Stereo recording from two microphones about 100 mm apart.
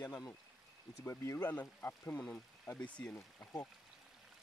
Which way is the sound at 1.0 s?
25° left (ahead or behind).